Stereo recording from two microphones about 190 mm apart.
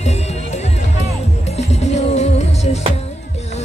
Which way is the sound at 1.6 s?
35° left (ahead or behind).